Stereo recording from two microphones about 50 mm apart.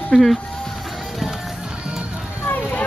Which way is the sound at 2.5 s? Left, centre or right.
Left.